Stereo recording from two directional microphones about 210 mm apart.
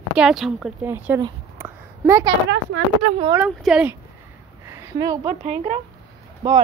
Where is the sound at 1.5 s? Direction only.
10° right (ahead or behind).